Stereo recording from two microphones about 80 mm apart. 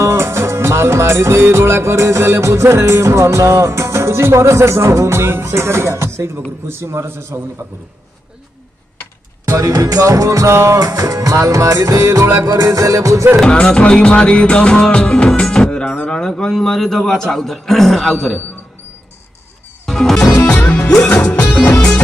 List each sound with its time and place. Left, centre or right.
0.0 s music: right
9.5 s music: right
13.4 s music: centre
17.3 s a man's voice: centre
19.9 s music: centre
20.3 s music: centre
21.7 s music: centre